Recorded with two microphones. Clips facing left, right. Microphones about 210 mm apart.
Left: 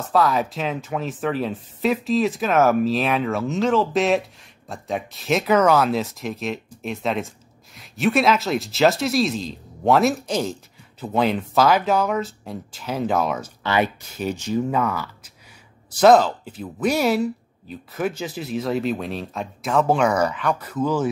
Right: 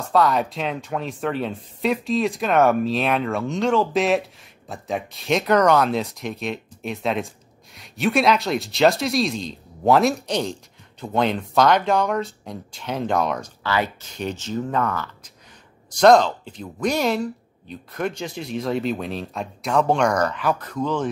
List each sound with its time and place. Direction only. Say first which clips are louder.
0.1 s speech: right 1 dB; centre (ahead or behind)
13.6 s speech: left 4 dB; 20° left (ahead or behind)